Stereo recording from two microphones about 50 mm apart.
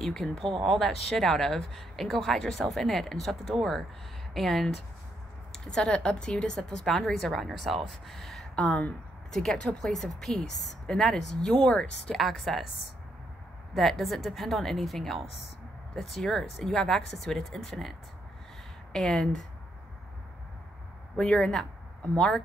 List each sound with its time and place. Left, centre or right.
0.0 s speech: centre
5.5 s a sound: centre
5.9 s speech: centre
12.2 s a woman's voice: centre
13.7 s a woman's voice: centre
18.9 s speech: centre
21.2 s speech: centre